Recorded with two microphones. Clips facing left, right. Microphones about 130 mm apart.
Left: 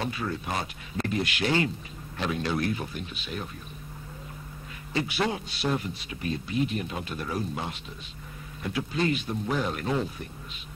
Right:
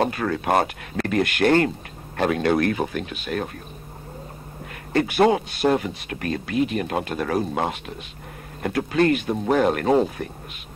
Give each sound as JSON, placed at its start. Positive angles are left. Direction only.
{"t": 0.0, "sound": "a man's voice", "side_deg": -65}
{"t": 4.9, "sound": "speech", "side_deg": -50}
{"t": 5.8, "sound": "a man's voice", "side_deg": -75}
{"t": 8.6, "sound": "a man's voice", "side_deg": -60}